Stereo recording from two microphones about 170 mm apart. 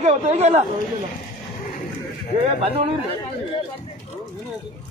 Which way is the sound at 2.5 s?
35° right (ahead or behind).